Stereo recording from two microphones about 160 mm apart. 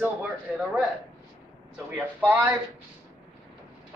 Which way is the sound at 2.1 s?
20° right (ahead or behind).